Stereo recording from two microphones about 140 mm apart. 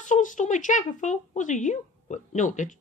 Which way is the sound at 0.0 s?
65° left (ahead or behind).